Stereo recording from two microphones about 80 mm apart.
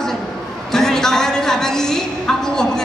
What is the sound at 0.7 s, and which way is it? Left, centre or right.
A woman's voice, centre.